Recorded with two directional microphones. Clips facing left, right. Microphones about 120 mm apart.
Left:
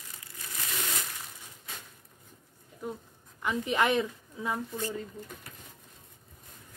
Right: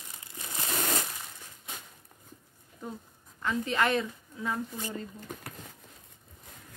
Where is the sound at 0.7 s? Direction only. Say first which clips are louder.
Right 6 dB; 45° right (ahead or behind).